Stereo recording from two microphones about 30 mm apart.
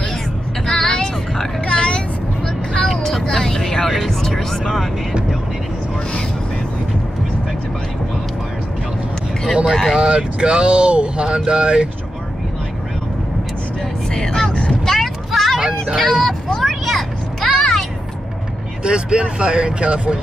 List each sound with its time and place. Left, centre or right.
0.7 s a sound: centre
1.7 s vehicle: left
2.4 s vehicle: left
2.9 s vehicle: centre
3.3 s speech: centre
9.9 s speech: right
14.1 s music: left
15.0 s a sound: centre
16.0 s speech: centre
16.6 s vehicle: centre
17.6 s a sound: centre
18.8 s speech: right